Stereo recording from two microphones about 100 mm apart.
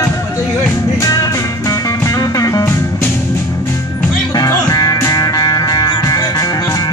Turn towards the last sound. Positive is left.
turn(degrees=35)  # may be behind; listen again after turning